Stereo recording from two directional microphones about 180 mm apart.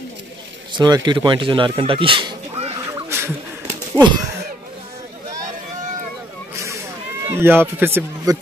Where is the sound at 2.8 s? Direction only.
15° right (ahead or behind).